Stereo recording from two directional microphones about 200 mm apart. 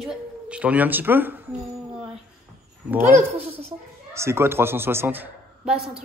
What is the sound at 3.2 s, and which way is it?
Speech, 30° right (ahead or behind).